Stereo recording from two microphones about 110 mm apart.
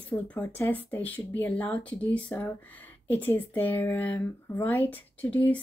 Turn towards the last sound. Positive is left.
turn(degrees=15)  # may be behind; listen again after turning